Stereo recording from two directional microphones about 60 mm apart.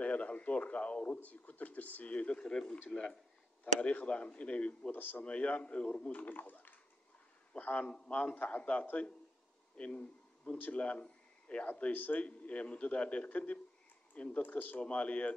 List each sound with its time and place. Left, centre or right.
0.0 s a man's voice: left
4.9 s speech: left
5.2 s a man's voice: left
6.2 s a man's voice: left
10.8 s a sound: centre
11.8 s a man's voice: left
14.8 s a man's voice: left